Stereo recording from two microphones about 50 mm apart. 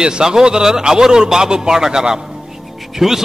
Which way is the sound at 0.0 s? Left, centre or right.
Centre.